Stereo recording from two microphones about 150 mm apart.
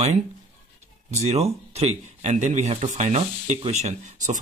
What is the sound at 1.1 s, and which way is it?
Speech, 45° right (ahead or behind).